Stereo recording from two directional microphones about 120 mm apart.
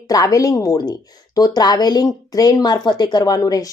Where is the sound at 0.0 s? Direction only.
30° left (ahead or behind).